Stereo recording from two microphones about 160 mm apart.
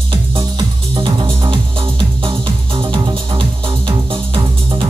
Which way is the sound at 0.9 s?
30° right (ahead or behind).